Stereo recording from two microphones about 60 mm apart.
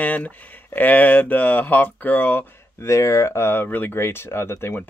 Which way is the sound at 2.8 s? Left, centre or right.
Left.